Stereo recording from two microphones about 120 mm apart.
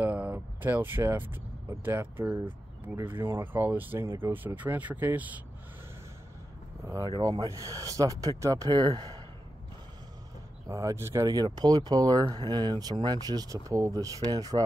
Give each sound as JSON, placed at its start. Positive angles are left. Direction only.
{"t": 0.0, "sound": "speech", "side_deg": -15}
{"t": 6.8, "sound": "speech", "side_deg": -25}
{"t": 10.7, "sound": "speech", "side_deg": -25}